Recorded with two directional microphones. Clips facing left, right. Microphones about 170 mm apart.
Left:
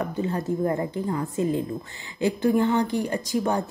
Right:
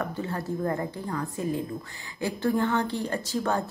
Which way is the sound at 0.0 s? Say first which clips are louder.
Left 4 dB; 20° left (ahead or behind).